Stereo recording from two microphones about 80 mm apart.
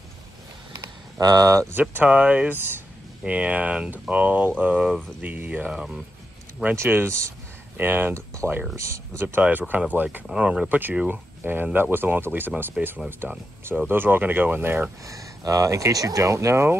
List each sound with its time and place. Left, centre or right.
1.2 s speech: right
1.7 s speech: right
2.0 s speech: centre
2.5 s speech: right
3.3 s speech: centre
5.7 s speech: centre
6.6 s speech: right
8.7 s speech: right
9.4 s speech: right
10.2 s speech: centre
11.0 s speech: right
15.0 s speech: right